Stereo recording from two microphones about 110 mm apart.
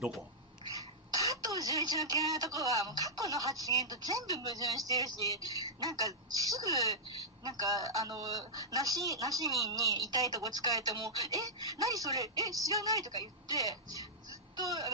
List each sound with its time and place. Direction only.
1.1 s speech: 35° right (ahead or behind)